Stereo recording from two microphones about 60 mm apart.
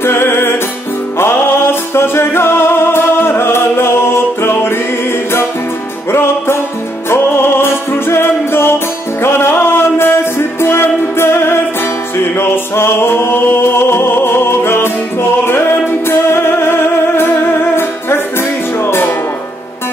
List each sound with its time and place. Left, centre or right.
0.0 s music: left
6.1 s music: left